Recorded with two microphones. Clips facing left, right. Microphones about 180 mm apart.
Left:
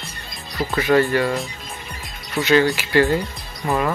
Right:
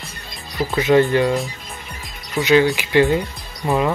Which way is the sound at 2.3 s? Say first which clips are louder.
Right 2 dB; 15° right (ahead or behind).